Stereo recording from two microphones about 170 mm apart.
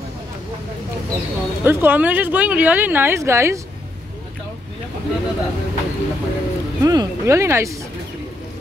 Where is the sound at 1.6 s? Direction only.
10° right (ahead or behind).